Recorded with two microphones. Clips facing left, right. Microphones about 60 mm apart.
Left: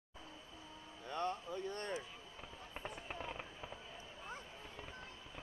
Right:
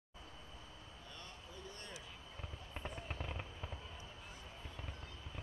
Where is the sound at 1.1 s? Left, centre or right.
Left.